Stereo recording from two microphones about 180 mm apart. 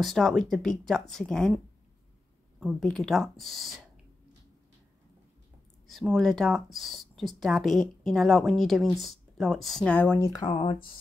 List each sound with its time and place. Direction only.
0.0 s speech: centre (ahead or behind)
2.6 s speech: centre (ahead or behind)
5.9 s speech: centre (ahead or behind); by 10.8 s 25° left (ahead or behind)